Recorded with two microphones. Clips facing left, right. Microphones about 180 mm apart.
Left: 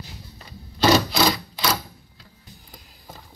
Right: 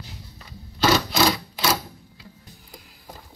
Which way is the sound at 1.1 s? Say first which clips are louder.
Even; centre (ahead or behind).